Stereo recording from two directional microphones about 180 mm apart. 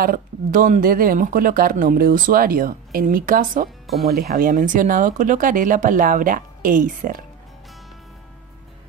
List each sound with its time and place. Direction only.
0.0 s speech: 50° right (ahead or behind)